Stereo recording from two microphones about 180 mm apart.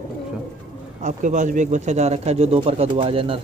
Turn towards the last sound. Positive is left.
turn(degrees=-30)  # may be behind; listen again after turning